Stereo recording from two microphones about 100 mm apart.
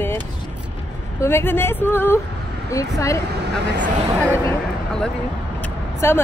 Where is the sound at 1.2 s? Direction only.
25° left (ahead or behind).